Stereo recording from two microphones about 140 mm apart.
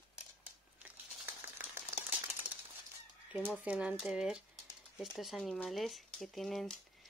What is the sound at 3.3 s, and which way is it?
Speech, 10° right (ahead or behind).